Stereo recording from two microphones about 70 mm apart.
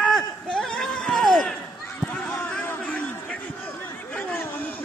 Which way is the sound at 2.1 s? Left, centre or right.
Left.